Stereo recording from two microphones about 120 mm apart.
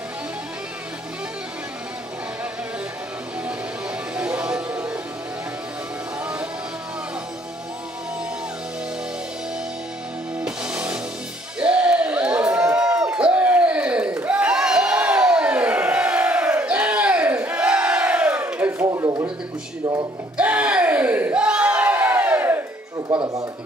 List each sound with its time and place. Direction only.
4.2 s music: 10° right (ahead or behind)
10.4 s music: 10° right (ahead or behind)
11.6 s crowd: 10° right (ahead or behind)
18.9 s a sound: 30° right (ahead or behind)
20.3 s crowd: 10° right (ahead or behind)
23.1 s a sound: 10° right (ahead or behind)